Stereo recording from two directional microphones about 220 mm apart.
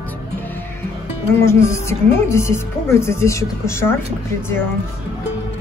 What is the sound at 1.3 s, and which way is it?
A woman's voice, 10° left (ahead or behind).